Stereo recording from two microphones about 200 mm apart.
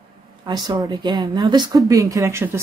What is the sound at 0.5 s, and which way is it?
Speech, 20° right (ahead or behind).